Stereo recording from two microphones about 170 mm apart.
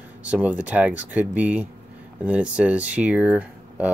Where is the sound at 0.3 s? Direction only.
10° right (ahead or behind).